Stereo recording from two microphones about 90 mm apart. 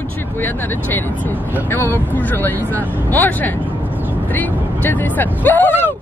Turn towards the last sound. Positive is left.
turn(degrees=20)  # may be behind; listen again after turning